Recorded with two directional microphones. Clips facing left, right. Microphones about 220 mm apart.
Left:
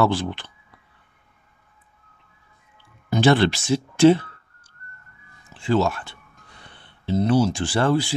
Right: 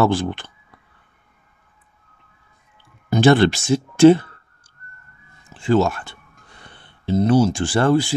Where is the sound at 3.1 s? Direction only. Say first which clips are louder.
Right 3 dB; 45° right (ahead or behind).